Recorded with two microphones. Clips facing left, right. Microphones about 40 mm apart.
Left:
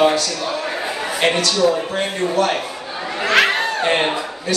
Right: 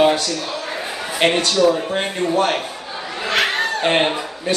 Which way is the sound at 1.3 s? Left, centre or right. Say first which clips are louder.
Right 1 dB; right.